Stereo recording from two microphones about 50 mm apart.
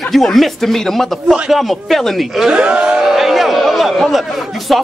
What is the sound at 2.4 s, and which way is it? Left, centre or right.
Speech, centre.